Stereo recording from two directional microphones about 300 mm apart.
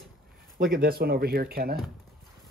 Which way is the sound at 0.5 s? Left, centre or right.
Right.